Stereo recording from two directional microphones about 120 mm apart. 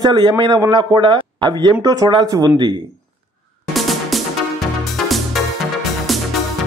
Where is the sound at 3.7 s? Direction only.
Centre (ahead or behind).